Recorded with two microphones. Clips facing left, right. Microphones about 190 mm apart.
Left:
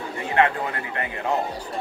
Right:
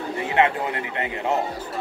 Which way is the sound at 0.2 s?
20° right (ahead or behind).